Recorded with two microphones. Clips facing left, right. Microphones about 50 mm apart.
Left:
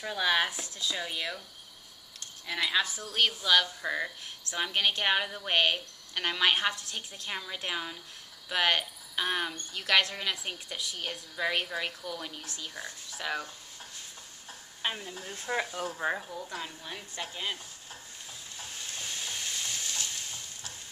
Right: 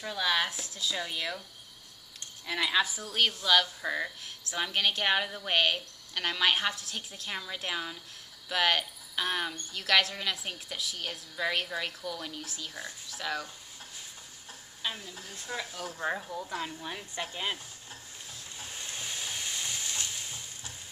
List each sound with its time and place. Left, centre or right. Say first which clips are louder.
0.0 s a woman's voice: left 2 dB; centre
2.4 s a woman's voice: right 1 dB; centre
14.8 s speech: left 3 dB; left
15.6 s speech: left 2 dB; centre
16.3 s a woman's voice: right 3 dB; centre
18.6 s stir: even; centre